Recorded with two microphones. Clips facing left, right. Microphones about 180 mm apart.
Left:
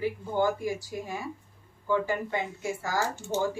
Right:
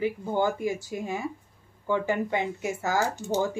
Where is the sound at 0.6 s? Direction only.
20° right (ahead or behind).